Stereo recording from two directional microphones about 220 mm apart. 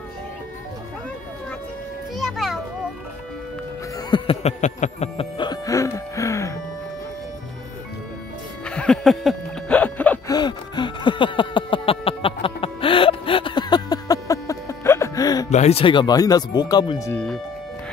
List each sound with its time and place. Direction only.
2.1 s children playing: centre (ahead or behind)
4.1 s music: 25° left (ahead or behind)
8.6 s a sound: 5° left (ahead or behind)
10.3 s gasp: 20° left (ahead or behind)
15.5 s music: 30° left (ahead or behind)
17.1 s speech: 5° left (ahead or behind)